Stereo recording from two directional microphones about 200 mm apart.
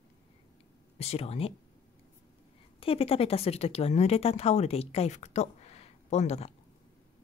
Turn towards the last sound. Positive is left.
turn(degrees=35)  # may be behind; listen again after turning